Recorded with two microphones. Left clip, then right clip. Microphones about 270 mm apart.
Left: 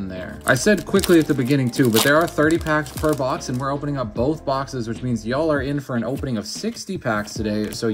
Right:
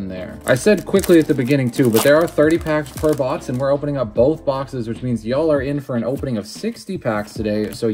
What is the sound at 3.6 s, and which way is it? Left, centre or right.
Speech, right.